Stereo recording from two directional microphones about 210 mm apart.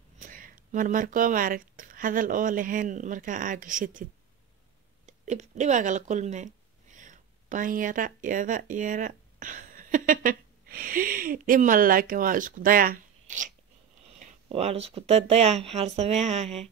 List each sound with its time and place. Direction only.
0.2 s speech: 40° right (ahead or behind)
14.2 s speech: 30° right (ahead or behind)